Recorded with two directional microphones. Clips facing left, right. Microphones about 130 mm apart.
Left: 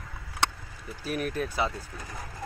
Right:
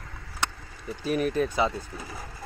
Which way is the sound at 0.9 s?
Centre (ahead or behind).